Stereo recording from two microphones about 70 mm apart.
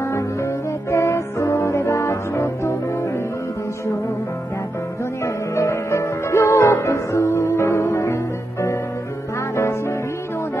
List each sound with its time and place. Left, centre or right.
0.0 s music: left
5.2 s music: left